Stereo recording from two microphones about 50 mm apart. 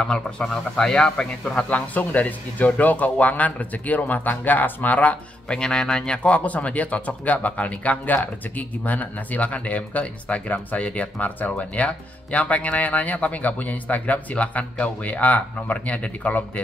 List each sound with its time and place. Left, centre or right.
0.0 s speech: centre
5.5 s speech: centre; by 16.6 s left